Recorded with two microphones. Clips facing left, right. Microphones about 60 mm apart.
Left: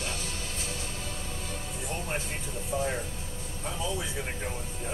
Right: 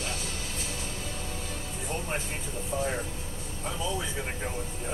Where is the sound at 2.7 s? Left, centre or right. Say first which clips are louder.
Even; right.